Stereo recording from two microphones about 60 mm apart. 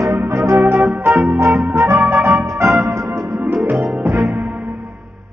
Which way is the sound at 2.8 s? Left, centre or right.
Right.